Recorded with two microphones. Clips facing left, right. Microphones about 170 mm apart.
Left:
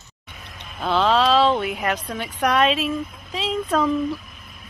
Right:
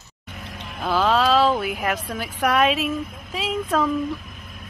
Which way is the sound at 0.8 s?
Centre (ahead or behind).